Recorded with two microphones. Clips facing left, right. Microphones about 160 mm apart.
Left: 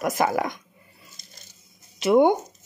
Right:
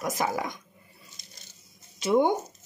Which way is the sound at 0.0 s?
65° left (ahead or behind).